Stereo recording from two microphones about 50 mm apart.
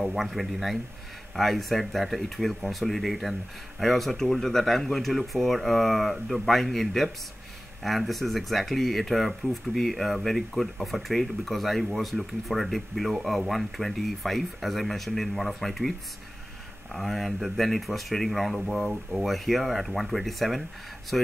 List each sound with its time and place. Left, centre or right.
0.0 s speech: centre
16.9 s speech: centre